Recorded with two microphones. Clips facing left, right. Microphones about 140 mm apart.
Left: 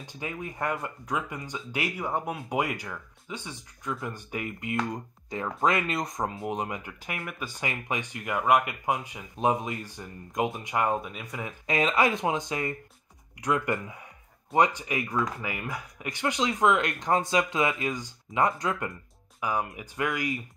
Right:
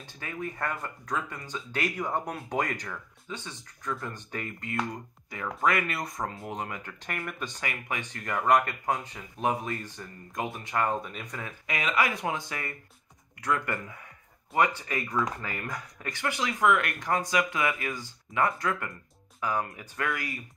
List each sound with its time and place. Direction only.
0.0 s speech: 15° left (ahead or behind)
7.6 s speech: 20° left (ahead or behind)
11.6 s speech: 30° left (ahead or behind)